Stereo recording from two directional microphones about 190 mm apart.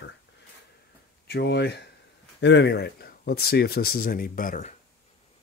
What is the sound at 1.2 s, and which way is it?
Speech, 60° left (ahead or behind).